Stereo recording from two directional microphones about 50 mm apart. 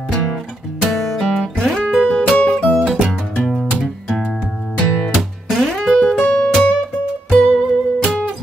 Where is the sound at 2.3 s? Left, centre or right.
Left.